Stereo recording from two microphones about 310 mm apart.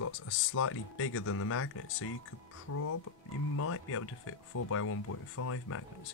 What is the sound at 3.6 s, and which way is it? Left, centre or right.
Speech, left.